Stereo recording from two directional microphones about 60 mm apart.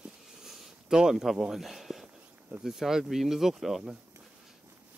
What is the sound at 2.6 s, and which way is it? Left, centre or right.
Speech, centre.